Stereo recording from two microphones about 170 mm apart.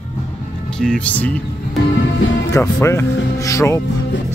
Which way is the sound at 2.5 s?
15° left (ahead or behind).